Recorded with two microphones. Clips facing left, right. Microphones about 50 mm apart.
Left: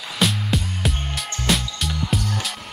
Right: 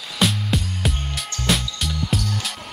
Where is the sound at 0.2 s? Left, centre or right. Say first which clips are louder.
Even; centre.